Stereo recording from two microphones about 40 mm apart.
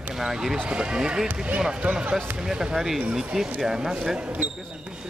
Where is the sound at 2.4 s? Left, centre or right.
Centre.